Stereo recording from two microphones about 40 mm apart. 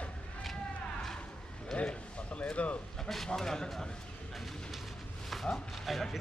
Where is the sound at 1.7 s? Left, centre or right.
Left.